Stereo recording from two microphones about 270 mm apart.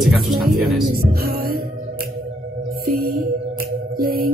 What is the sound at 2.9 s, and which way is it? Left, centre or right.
Music, right.